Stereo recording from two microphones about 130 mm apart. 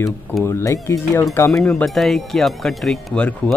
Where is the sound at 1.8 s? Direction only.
Centre (ahead or behind).